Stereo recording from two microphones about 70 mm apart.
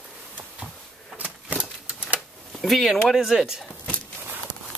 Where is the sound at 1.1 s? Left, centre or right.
Right.